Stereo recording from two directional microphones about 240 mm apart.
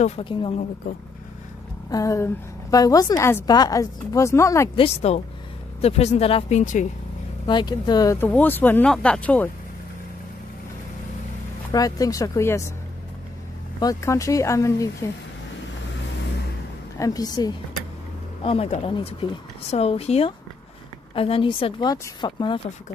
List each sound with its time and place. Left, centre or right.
0.0 s speech: left
1.9 s a woman's voice: centre
4.8 s speech: left
7.4 s a woman's voice: centre
11.7 s a woman's voice: centre
13.7 s a woman's voice: centre
17.0 s a woman's voice: centre